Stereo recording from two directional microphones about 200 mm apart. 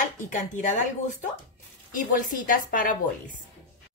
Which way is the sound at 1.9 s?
45° left (ahead or behind).